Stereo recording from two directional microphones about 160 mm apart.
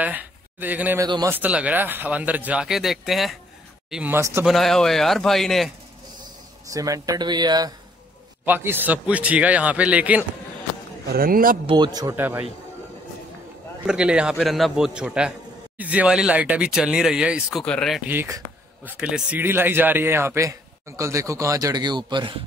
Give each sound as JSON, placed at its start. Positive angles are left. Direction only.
{"t": 0.0, "sound": "speech", "side_deg": -10}
{"t": 1.0, "sound": "speech", "side_deg": -25}
{"t": 1.3, "sound": "a man's voice", "side_deg": -10}
{"t": 3.9, "sound": "a man's voice", "side_deg": -10}
{"t": 4.5, "sound": "speech", "side_deg": 0}
{"t": 6.7, "sound": "speech", "side_deg": -20}
{"t": 8.5, "sound": "a man's voice", "side_deg": -15}
{"t": 11.1, "sound": "a man's voice", "side_deg": -65}
{"t": 11.6, "sound": "speech", "side_deg": -25}
{"t": 12.2, "sound": "a man's voice", "side_deg": -10}
{"t": 13.8, "sound": "speech", "side_deg": -5}
{"t": 18.0, "sound": "a man's voice", "side_deg": -15}